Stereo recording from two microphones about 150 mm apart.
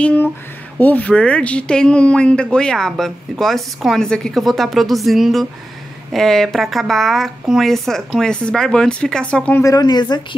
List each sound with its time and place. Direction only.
0.0 s speech: 10° left (ahead or behind)
9.6 s speech: 25° left (ahead or behind)